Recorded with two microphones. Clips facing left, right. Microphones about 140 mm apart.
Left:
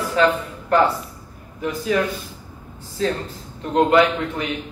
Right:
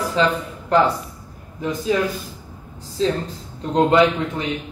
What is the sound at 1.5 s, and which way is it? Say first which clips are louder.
Speech: right 2 dB; 25° right (ahead or behind).